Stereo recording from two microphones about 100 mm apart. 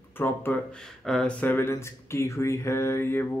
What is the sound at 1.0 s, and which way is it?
Speech, 5° left (ahead or behind).